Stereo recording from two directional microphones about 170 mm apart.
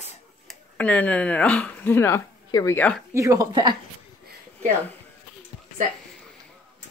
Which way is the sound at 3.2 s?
20° right (ahead or behind).